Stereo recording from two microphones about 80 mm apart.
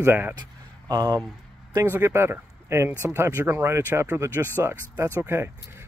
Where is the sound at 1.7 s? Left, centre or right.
Right.